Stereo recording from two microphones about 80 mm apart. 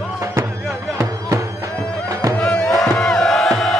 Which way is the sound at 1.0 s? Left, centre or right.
Right.